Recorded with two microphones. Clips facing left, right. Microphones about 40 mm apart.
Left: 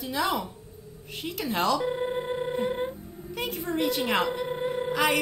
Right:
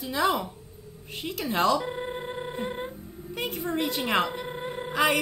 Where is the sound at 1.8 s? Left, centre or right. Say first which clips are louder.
Left 4 dB; centre.